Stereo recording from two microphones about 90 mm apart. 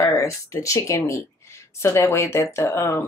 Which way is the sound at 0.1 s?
35° left (ahead or behind).